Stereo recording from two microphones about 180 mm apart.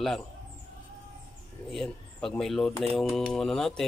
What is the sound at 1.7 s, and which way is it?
Speech, 5° left (ahead or behind).